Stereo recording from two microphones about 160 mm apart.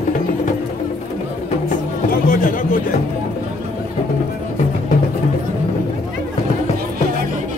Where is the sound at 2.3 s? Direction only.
65° left (ahead or behind).